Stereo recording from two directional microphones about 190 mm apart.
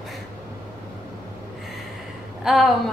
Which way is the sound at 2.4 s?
Centre (ahead or behind).